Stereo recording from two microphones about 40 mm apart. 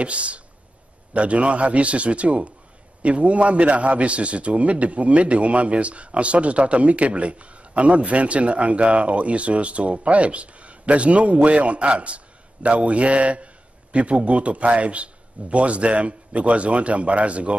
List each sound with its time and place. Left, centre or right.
0.0 s a man's voice: right